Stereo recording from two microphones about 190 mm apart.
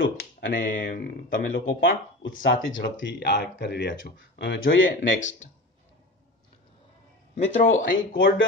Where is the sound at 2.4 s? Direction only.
80° left.